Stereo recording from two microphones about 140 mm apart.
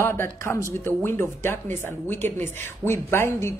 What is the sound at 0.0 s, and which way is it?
Speech, 20° left (ahead or behind).